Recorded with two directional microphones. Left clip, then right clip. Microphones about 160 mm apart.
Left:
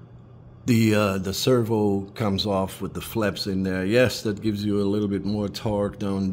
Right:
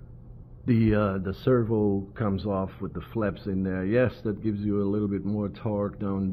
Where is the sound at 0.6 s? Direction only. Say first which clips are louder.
Left 4 dB; 15° left (ahead or behind).